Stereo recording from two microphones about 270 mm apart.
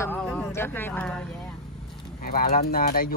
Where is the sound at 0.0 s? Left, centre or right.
Centre.